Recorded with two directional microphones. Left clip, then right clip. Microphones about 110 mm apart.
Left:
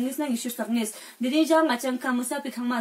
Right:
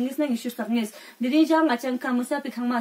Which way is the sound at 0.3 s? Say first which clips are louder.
Right 1 dB; 25° right (ahead or behind).